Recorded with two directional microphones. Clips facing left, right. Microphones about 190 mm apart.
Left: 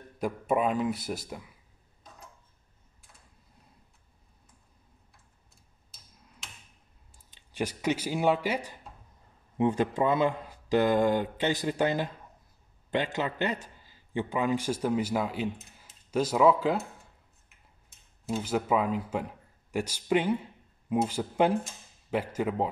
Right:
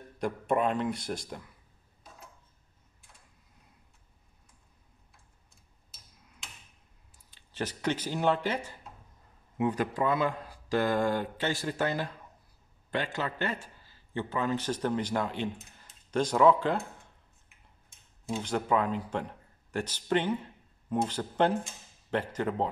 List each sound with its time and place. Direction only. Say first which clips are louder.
0.2 s a man's voice: left 1 dB; 5° left (ahead or behind)
7.2 s speech: left 3 dB; 15° left (ahead or behind)
9.6 s a man's voice: left 3 dB; 25° left (ahead or behind); by 16.8 s 5° left (ahead or behind)
17.8 s speech: left 2 dB; 5° left (ahead or behind)